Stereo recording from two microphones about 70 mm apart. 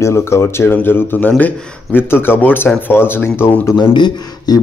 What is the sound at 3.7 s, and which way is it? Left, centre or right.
Speech, left.